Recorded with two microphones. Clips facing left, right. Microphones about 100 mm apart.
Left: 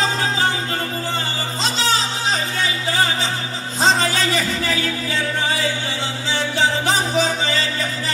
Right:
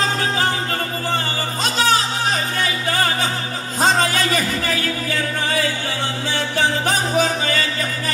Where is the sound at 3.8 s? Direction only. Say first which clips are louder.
Even; 50° right (ahead or behind).